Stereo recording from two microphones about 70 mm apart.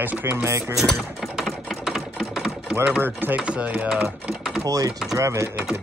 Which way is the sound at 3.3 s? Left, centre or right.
Centre.